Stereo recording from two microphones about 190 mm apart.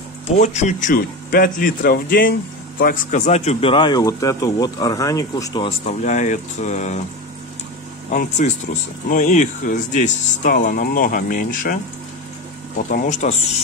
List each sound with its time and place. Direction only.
0.4 s speech: 40° left (ahead or behind)
8.1 s speech: 45° left (ahead or behind)